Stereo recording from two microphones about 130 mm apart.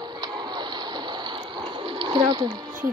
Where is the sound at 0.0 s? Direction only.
35° right (ahead or behind).